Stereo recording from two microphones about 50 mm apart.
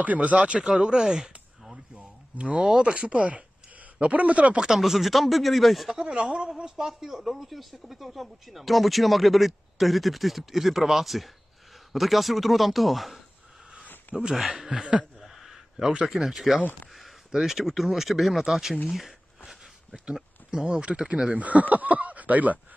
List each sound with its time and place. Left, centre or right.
0.0 s speech: right
0.4 s speech: centre
1.0 s a sound: centre
2.0 s speech: right
4.6 s speech: centre
5.9 s speech: right
6.5 s speech: centre
14.3 s speech: centre
15.1 s a sound: centre
16.2 s speech: centre
18.9 s a sound: centre
20.6 s speech: right
21.4 s speech: right